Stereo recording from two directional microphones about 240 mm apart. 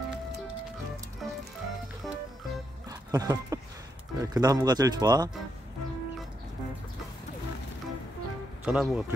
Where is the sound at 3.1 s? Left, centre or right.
Centre.